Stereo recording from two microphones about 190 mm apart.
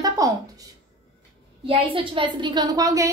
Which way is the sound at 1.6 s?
25° right (ahead or behind).